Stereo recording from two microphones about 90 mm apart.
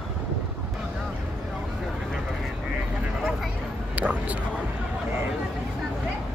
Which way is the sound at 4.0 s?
15° right (ahead or behind).